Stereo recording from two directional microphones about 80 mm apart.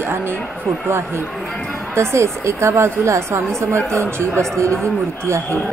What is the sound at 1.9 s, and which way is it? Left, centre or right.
Speech, right.